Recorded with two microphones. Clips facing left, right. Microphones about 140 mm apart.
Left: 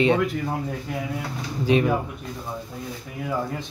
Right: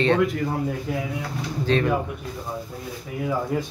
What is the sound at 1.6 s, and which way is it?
Speech, 10° left (ahead or behind).